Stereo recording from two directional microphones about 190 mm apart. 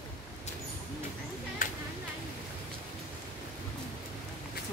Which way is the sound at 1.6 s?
45° left (ahead or behind).